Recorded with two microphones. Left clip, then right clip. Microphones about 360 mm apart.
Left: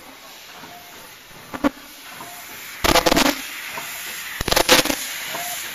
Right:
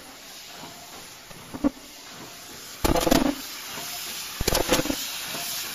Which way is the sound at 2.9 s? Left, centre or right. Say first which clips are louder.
Left 6 dB; left.